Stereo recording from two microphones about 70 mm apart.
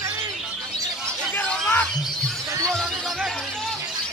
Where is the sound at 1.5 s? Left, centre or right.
Centre.